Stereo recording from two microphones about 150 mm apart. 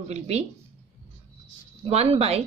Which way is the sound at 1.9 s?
45° right (ahead or behind).